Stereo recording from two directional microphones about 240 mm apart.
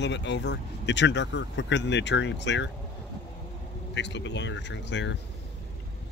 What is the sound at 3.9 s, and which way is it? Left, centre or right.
Speech, left.